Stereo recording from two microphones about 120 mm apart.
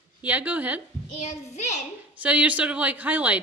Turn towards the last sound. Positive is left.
turn(degrees=-15)  # may be behind; listen again after turning